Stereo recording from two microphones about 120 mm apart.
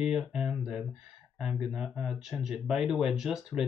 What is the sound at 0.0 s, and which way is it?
Speech, 5° right (ahead or behind).